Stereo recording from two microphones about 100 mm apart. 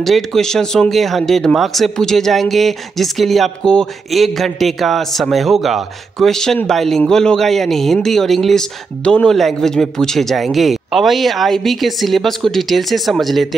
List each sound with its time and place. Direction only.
0.0 s speech: 5° left (ahead or behind)